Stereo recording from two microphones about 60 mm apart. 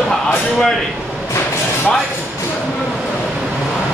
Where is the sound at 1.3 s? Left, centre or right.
Left.